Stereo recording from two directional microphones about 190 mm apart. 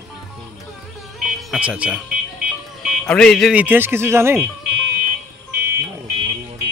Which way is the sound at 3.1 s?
5° left (ahead or behind).